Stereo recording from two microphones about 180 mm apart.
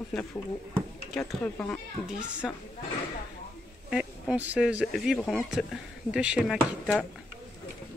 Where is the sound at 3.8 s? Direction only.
5° right (ahead or behind).